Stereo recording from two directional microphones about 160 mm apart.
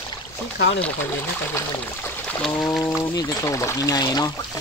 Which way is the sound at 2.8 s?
20° left (ahead or behind).